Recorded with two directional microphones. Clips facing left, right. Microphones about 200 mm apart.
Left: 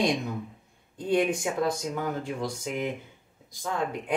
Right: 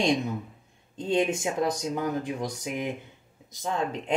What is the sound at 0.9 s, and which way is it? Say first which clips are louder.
Speech: even; 25° right (ahead or behind).